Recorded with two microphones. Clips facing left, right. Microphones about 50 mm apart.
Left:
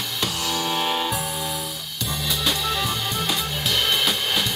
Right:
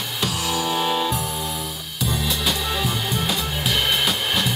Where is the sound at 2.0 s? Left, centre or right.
Centre.